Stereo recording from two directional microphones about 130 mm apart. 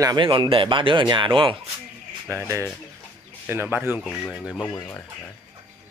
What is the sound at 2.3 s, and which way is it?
Speech, 20° right (ahead or behind).